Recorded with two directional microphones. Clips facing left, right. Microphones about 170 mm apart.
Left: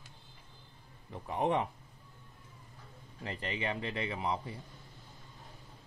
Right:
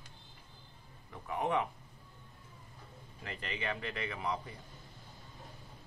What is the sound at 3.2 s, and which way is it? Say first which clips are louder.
Speech: left 3 dB; 30° left (ahead or behind).